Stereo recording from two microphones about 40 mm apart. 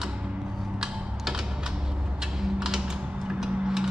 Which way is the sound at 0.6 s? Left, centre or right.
Centre.